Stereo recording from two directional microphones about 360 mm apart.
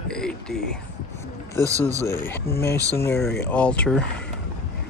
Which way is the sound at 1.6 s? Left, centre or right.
Centre.